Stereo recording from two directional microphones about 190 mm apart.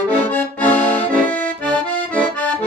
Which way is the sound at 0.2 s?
10° left (ahead or behind).